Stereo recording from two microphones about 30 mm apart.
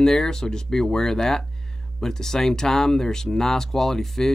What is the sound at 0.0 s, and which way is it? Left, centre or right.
Speech, centre.